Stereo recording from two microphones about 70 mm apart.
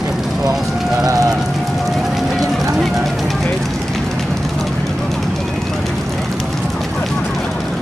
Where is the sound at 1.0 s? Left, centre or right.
Right.